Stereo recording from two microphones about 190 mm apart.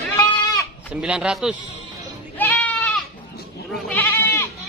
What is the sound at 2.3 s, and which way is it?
Goat, 10° left (ahead or behind).